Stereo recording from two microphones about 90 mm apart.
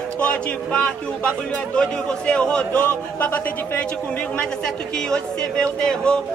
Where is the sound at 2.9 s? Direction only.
20° left (ahead or behind).